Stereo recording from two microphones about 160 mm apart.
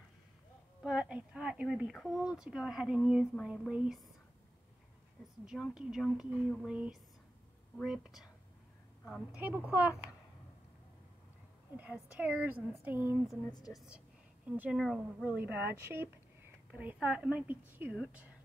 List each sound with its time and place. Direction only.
0.8 s a woman's voice: 5° right (ahead or behind)
5.4 s a woman's voice: 5° right (ahead or behind)
9.4 s speech: 10° right (ahead or behind)
11.7 s speech: 10° right (ahead or behind)
13.5 s a woman's voice: 25° left (ahead or behind)
13.7 s a woman's voice: 5° right (ahead or behind)
15.3 s speech: 10° right (ahead or behind)